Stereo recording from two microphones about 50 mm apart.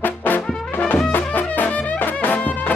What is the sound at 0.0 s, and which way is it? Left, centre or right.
Brass instrument, left.